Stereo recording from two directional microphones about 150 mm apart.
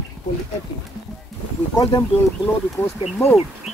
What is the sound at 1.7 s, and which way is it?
Speech, 25° left (ahead or behind).